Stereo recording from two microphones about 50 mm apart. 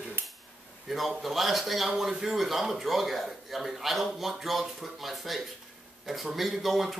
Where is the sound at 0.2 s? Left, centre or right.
Right.